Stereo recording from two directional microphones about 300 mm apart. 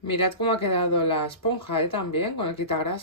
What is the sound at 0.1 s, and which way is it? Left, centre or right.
Speech, centre.